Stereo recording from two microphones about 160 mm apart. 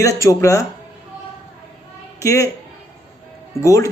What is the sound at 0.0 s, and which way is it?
Speech, 20° left (ahead or behind).